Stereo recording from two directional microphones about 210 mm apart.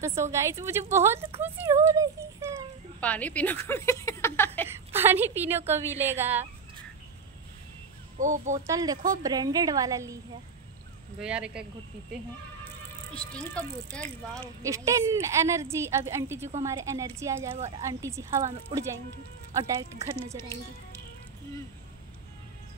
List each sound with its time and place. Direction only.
0.0 s a woman's voice: 15° right (ahead or behind)
3.0 s speech: 5° left (ahead or behind)
4.6 s a sound: 10° right (ahead or behind)
5.7 s a woman's voice: 10° right (ahead or behind)
8.2 s speech: 35° right (ahead or behind)
8.6 s a woman's voice: 15° right (ahead or behind)
11.1 s speech: 5° right (ahead or behind)
13.1 s speech: 5° left (ahead or behind)
14.3 s a woman's voice: 15° right (ahead or behind)
17.6 s speech: 30° right (ahead or behind)
17.8 s a woman's voice: 15° right (ahead or behind)